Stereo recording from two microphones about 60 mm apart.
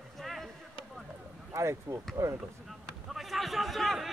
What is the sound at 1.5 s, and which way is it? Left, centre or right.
Speech, right.